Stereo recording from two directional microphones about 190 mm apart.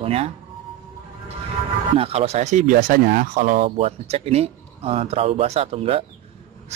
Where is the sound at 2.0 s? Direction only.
30° right (ahead or behind).